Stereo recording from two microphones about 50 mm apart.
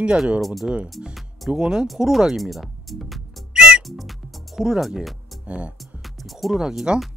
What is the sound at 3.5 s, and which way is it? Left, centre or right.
Music, centre.